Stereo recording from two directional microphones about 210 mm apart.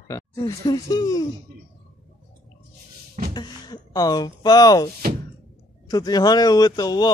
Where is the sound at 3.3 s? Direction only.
20° left (ahead or behind).